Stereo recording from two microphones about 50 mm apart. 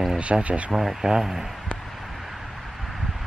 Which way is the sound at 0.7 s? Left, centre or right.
Centre.